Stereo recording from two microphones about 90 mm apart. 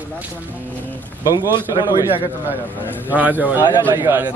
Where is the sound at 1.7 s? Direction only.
50° left (ahead or behind).